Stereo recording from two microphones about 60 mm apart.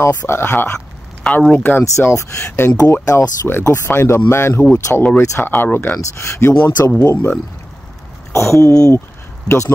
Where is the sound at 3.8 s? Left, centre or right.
Left.